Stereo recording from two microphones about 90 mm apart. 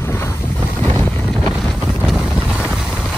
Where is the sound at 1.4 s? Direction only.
5° right (ahead or behind).